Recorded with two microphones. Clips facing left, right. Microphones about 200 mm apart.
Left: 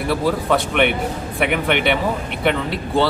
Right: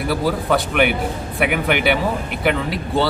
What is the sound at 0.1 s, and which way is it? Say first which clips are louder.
Speech: left 1 dB; centre (ahead or behind).